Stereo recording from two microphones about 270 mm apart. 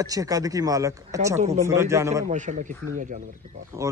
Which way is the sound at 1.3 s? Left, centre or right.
Right.